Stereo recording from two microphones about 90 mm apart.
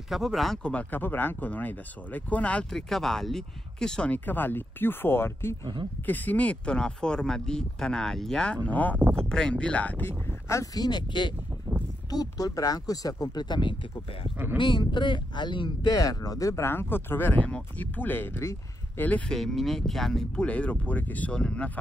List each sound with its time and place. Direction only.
0.1 s speech: centre (ahead or behind)
0.7 s speech: 15° left (ahead or behind)
2.7 s speech: 5° left (ahead or behind)
8.6 s speech: 15° left (ahead or behind)
10.5 s speech: 40° left (ahead or behind)
12.1 s speech: 45° left (ahead or behind); by 19.0 s 30° left (ahead or behind)
19.0 s speech: 15° left (ahead or behind)
19.3 s speech: centre (ahead or behind)